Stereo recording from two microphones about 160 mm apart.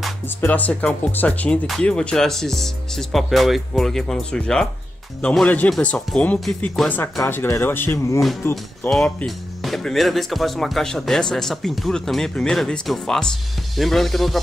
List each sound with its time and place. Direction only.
0.4 s speech: 10° left (ahead or behind)
8.9 s speech: centre (ahead or behind)